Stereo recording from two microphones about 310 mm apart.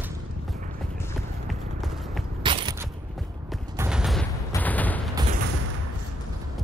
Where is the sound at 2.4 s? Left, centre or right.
Centre.